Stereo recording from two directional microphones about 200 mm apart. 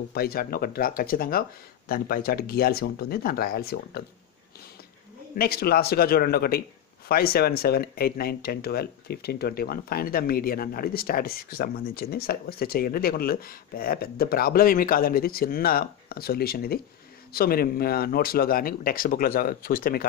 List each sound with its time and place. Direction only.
0.1 s speech: 50° left (ahead or behind)
5.4 s speech: 50° left (ahead or behind)